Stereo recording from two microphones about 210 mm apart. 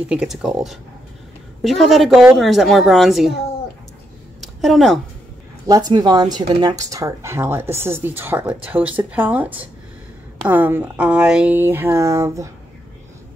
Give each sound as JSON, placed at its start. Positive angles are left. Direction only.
{"t": 0.1, "sound": "a woman's voice", "side_deg": -5}
{"t": 4.4, "sound": "a sound", "side_deg": 0}
{"t": 5.7, "sound": "speech", "side_deg": -20}